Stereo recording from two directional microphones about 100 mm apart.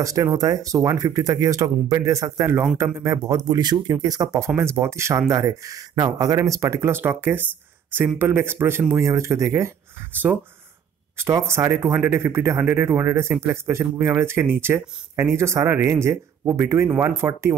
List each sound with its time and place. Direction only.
0.0 s speech: 35° right (ahead or behind)